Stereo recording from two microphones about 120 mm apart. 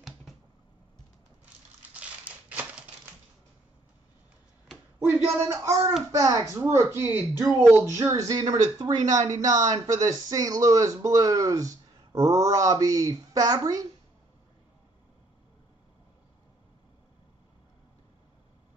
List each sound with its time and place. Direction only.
2.0 s crushing: 10° right (ahead or behind)
5.5 s speech: 20° right (ahead or behind)